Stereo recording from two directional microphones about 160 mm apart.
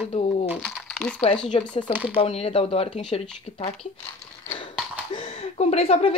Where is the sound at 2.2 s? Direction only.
40° left (ahead or behind).